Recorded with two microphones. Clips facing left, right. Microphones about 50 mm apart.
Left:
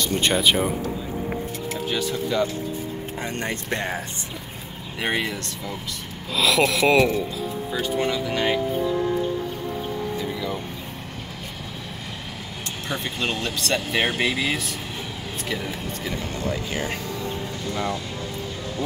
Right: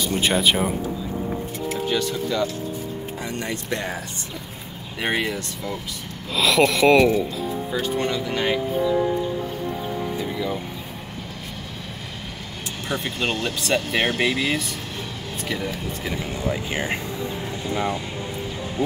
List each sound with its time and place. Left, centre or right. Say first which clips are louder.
0.0 s speech: even; centre
1.7 s vehicle: right 3 dB; centre
2.3 s speech: left 1 dB; centre
3.2 s speech: left 2 dB; left
5.0 s speech: right 1 dB; centre
12.8 s speech: right 2 dB; centre; by 18.9 s right